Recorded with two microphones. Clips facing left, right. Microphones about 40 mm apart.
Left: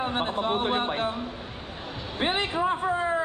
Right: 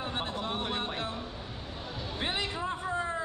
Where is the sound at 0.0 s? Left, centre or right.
Left.